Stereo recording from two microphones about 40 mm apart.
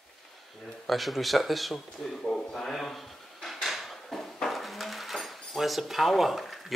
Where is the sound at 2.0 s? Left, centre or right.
Centre.